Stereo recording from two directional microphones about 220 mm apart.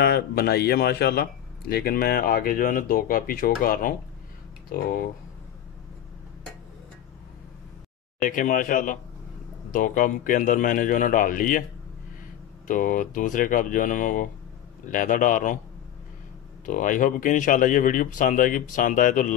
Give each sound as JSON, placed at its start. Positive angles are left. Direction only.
{"t": 0.0, "sound": "speech", "side_deg": 45}
{"t": 8.2, "sound": "speech", "side_deg": 35}
{"t": 12.6, "sound": "speech", "side_deg": 35}
{"t": 16.6, "sound": "speech", "side_deg": 35}